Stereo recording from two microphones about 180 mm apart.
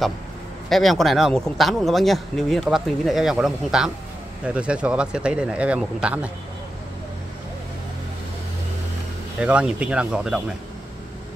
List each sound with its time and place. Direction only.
0.7 s speech: centre (ahead or behind)
9.4 s speech: 5° right (ahead or behind)